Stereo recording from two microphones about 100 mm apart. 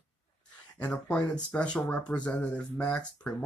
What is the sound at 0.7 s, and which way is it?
Speech, 15° left (ahead or behind).